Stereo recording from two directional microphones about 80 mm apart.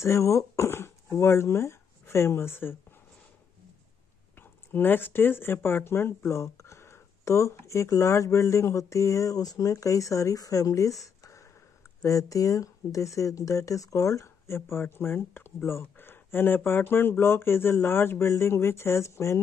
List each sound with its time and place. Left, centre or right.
0.0 s speech: left
4.4 s speech: left